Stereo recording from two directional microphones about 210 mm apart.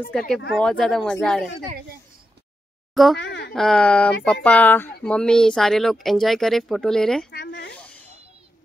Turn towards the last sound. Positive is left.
turn(degrees=55)  # may be behind; listen again after turning